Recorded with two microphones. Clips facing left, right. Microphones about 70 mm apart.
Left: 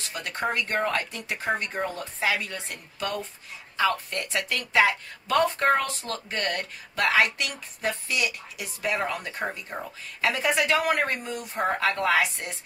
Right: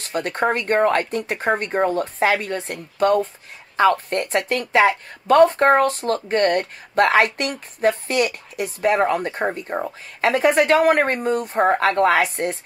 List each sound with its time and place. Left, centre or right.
0.0 s speech: right